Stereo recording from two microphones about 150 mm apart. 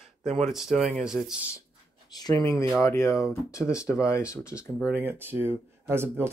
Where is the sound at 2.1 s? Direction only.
25° left (ahead or behind).